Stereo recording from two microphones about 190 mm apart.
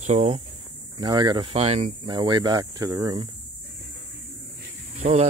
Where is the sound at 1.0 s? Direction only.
20° right (ahead or behind).